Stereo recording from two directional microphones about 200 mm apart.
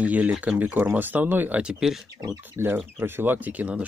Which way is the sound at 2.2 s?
15° right (ahead or behind).